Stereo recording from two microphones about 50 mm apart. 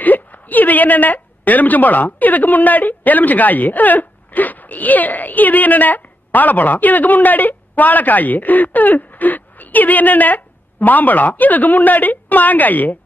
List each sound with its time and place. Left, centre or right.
0.0 s a woman's voice: left